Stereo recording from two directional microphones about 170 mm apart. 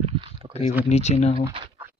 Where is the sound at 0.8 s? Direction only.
40° left (ahead or behind).